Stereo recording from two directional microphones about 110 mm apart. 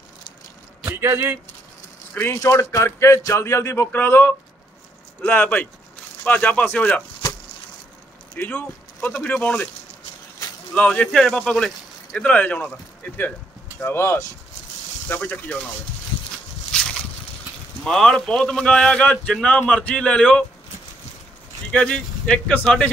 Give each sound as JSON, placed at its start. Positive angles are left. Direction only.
{"t": 0.8, "sound": "speech", "side_deg": -25}
{"t": 2.1, "sound": "a man's voice", "side_deg": 20}
{"t": 8.4, "sound": "a man's voice", "side_deg": 15}
{"t": 10.7, "sound": "a man's voice", "side_deg": 10}
{"t": 17.8, "sound": "a man's voice", "side_deg": 5}
{"t": 21.7, "sound": "a man's voice", "side_deg": 10}